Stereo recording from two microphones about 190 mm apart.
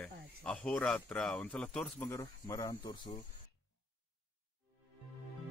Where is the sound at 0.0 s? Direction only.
5° left (ahead or behind).